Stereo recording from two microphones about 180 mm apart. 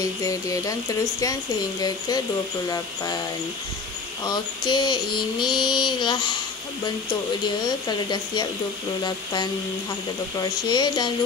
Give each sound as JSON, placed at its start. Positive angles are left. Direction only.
{"t": 0.0, "sound": "speech", "side_deg": 20}
{"t": 1.8, "sound": "speech", "side_deg": 20}
{"t": 4.2, "sound": "speech", "side_deg": 25}